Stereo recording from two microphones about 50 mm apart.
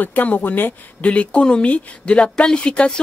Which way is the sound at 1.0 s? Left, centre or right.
Left.